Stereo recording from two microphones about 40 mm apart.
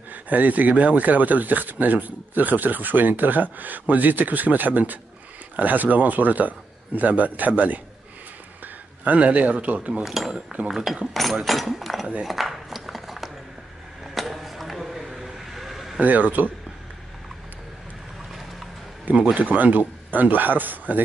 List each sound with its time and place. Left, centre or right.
0.1 s speech: right
9.0 s speech: right
10.0 s speech: centre
12.2 s cutlery: centre
14.1 s a sound: centre
16.0 s speech: right
19.3 s speech: right